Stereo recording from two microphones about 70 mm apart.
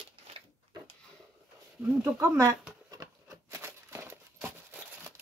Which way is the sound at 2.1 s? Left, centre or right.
Right.